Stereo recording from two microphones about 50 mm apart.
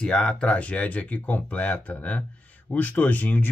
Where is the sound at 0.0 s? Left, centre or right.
Centre.